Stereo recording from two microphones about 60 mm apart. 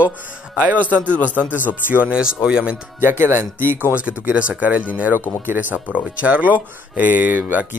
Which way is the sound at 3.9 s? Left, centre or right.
Right.